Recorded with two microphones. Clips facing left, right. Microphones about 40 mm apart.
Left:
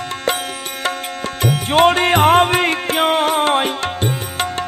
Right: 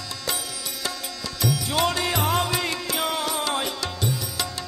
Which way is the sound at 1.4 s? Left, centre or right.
Left.